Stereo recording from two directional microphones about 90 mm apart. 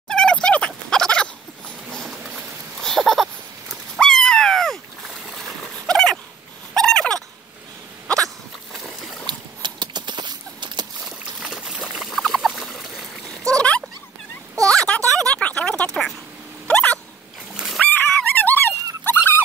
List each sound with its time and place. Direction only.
0.1 s fowl: 10° left (ahead or behind)
2.0 s a sound: 5° right (ahead or behind)
3.9 s dog: 5° left (ahead or behind)
5.9 s dog: 10° left (ahead or behind)
8.7 s boat: centre (ahead or behind)
9.2 s clip-clop: 55° right (ahead or behind)
11.4 s boat: 5° right (ahead or behind)
11.9 s a sound: centre (ahead or behind)
16.6 s hiccup: 15° left (ahead or behind)
17.6 s splash: 5° right (ahead or behind)
17.8 s dog: 20° left (ahead or behind)